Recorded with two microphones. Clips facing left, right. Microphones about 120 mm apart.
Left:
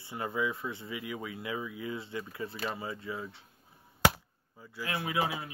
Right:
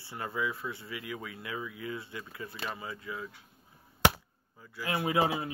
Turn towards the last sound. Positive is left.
turn(degrees=-30)  # may be behind; listen again after turning